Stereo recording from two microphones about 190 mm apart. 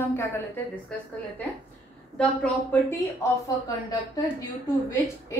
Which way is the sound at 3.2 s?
20° left (ahead or behind).